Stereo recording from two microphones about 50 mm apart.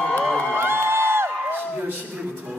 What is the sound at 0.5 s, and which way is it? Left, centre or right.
Music, right.